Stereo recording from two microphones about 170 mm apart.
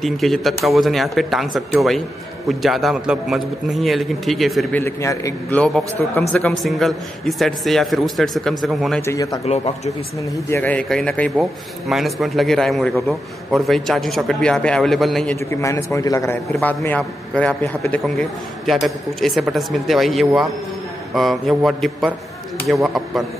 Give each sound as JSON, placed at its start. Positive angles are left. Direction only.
{"t": 0.0, "sound": "speech", "side_deg": 0}
{"t": 4.7, "sound": "a man's voice", "side_deg": 15}
{"t": 9.0, "sound": "a man's voice", "side_deg": 20}
{"t": 10.5, "sound": "a man's voice", "side_deg": 10}
{"t": 15.5, "sound": "a man's voice", "side_deg": 20}